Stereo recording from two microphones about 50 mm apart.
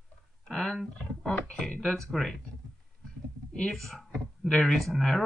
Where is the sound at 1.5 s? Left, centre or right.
Centre.